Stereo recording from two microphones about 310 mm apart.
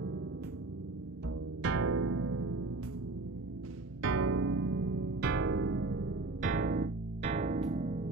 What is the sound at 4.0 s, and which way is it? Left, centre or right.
Music, right.